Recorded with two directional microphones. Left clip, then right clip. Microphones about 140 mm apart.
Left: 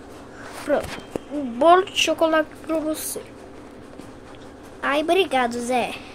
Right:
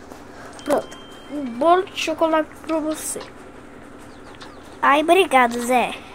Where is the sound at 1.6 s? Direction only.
5° right (ahead or behind).